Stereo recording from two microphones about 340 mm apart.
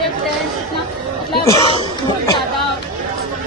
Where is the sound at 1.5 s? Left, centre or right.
Centre.